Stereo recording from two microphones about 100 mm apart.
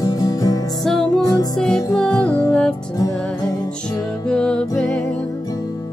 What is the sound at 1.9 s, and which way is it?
Music, 10° left (ahead or behind).